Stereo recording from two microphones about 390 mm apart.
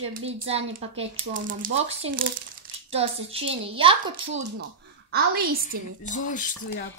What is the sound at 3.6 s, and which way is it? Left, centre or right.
A woman's voice, centre.